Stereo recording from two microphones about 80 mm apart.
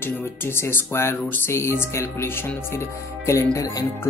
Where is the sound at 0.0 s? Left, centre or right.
Left.